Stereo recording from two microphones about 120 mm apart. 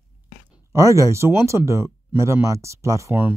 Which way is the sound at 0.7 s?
25° right (ahead or behind).